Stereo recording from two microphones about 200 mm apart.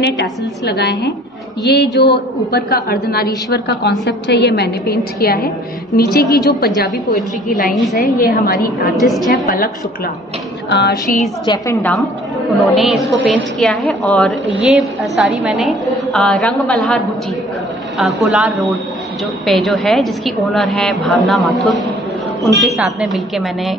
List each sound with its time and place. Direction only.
0.0 s a woman's voice: 55° left (ahead or behind)
8.9 s a woman's voice: centre (ahead or behind)
9.3 s a woman's voice: 45° left (ahead or behind)
10.7 s a woman's voice: 55° left (ahead or behind)
11.4 s a woman's voice: 15° left (ahead or behind)
12.5 s a woman's voice: centre (ahead or behind)
22.8 s a woman's voice: centre (ahead or behind)